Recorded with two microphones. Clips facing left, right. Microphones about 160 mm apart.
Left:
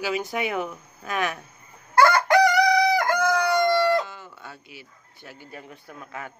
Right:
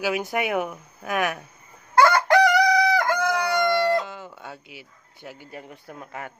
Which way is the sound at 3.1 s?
20° right (ahead or behind).